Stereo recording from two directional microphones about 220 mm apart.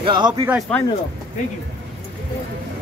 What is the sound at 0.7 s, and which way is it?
Speech, 5° left (ahead or behind).